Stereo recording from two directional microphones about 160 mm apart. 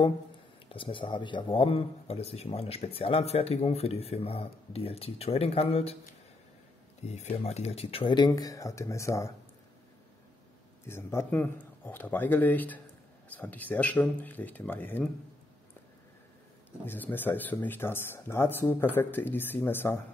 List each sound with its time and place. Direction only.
0.7 s speech: 35° left (ahead or behind)
7.0 s speech: 45° left (ahead or behind); by 9.3 s 20° left (ahead or behind)
10.9 s speech: 15° left (ahead or behind)
16.8 s speech: 10° left (ahead or behind)